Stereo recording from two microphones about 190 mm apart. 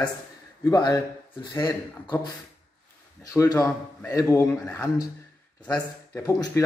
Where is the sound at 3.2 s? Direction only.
20° left (ahead or behind).